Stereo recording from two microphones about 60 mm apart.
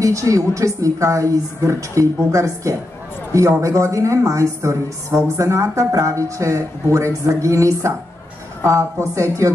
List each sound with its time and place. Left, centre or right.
0.0 s a woman's voice: right